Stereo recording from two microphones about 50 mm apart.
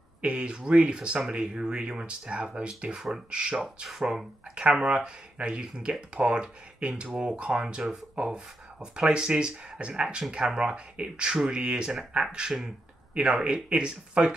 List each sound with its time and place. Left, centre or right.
0.2 s speech: right
4.6 s speech: right
12.4 s speech: centre
13.1 s speech: right